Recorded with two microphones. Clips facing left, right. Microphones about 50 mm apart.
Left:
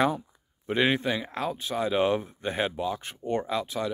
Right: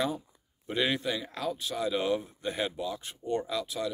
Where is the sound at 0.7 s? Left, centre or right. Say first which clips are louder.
Left 5 dB; left.